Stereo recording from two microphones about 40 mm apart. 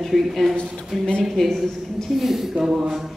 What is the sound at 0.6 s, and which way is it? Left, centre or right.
Speech, left.